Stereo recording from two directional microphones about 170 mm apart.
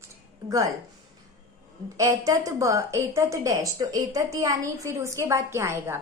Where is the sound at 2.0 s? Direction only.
20° right (ahead or behind).